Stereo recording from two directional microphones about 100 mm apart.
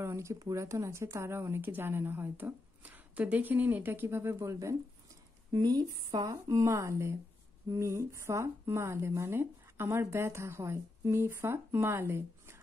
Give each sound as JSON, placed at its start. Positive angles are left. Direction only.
{"t": 0.0, "sound": "speech", "side_deg": -30}
{"t": 5.5, "sound": "speech", "side_deg": -40}
{"t": 6.5, "sound": "speech", "side_deg": -30}